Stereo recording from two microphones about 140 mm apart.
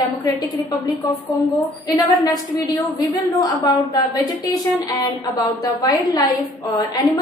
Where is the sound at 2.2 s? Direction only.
30° left (ahead or behind).